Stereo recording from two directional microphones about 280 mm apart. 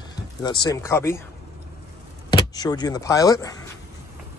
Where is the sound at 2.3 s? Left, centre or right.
Centre.